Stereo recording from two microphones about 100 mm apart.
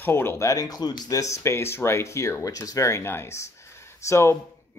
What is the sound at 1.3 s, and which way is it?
Speech, 25° left (ahead or behind).